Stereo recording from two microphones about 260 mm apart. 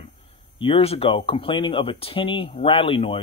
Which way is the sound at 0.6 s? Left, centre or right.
Left.